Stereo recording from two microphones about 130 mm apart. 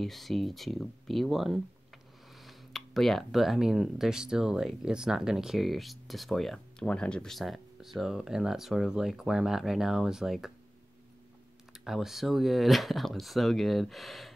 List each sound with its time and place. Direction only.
0.0 s speech: centre (ahead or behind)
11.7 s speech: centre (ahead or behind)